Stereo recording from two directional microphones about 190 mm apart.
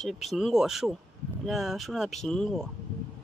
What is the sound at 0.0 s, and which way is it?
Speech, centre (ahead or behind).